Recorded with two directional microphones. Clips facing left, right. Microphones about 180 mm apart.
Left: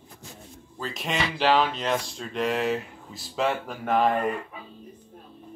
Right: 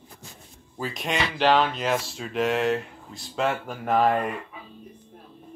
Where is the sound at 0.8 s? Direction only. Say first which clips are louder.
Right 1 dB; centre (ahead or behind).